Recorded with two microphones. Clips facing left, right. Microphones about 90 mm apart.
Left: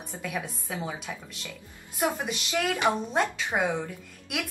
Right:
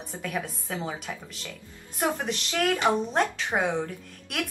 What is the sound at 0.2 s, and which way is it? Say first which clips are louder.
A woman's voice: right 2 dB; 5° left (ahead or behind).